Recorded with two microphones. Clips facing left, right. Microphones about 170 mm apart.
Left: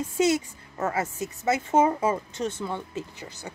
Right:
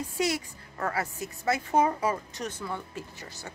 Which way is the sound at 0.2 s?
20° left (ahead or behind).